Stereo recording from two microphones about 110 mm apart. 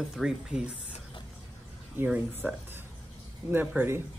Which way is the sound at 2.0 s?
15° right (ahead or behind).